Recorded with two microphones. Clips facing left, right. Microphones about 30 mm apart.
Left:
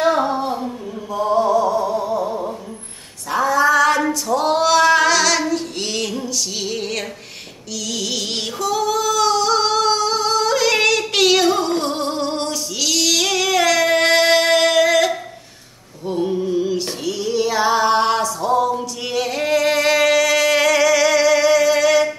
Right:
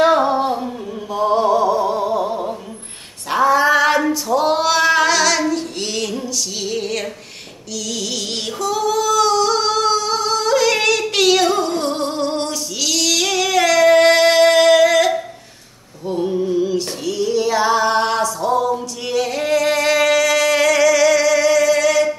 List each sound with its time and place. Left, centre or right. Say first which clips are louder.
1.3 s music: right 1 dB; right
3.3 s a sound: right 2 dB; right
4.1 s female singing: right 1 dB; centre
7.9 s singing: left 1 dB; centre
16.1 s music: right 1 dB; centre